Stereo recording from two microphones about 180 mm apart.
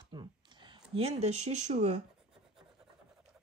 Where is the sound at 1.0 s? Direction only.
35° right (ahead or behind).